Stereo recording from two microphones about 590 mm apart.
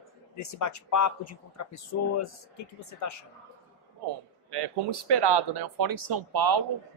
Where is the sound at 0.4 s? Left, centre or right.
Left.